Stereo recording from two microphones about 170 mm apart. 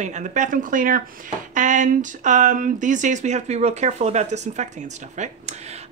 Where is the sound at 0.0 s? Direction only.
45° right (ahead or behind).